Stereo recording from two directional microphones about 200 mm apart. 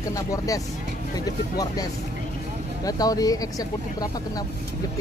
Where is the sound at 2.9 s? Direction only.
20° left (ahead or behind).